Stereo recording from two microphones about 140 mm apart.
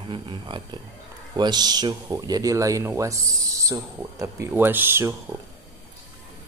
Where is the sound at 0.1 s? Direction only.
35° right (ahead or behind); by 5.1 s 15° right (ahead or behind).